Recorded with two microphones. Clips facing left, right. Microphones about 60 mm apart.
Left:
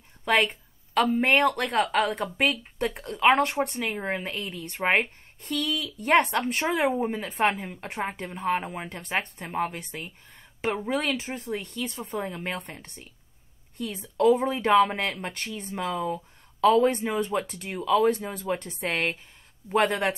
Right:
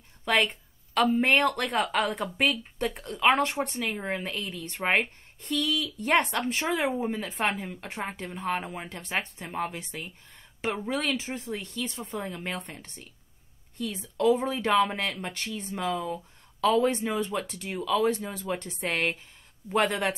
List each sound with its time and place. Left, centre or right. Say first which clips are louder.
0.2 s a sound: left 2 dB; centre
1.2 s speech: left 2 dB; centre
8.5 s speech: left 3 dB; centre
8.8 s speech: left 2 dB; centre
11.0 s speech: left 1 dB; centre
11.3 s speech: left 2 dB; centre
13.7 s a woman's voice: even; centre
14.2 s speech: left 3 dB; left
14.5 s speech: left 4 dB; centre